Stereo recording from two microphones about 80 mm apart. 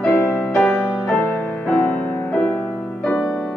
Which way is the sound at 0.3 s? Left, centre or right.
Centre.